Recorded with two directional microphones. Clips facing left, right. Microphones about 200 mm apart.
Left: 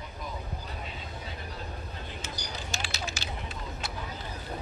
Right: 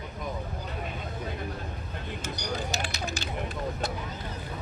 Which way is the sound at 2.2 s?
60° right (ahead or behind).